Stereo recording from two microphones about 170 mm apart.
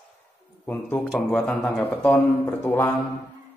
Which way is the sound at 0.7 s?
10° left (ahead or behind).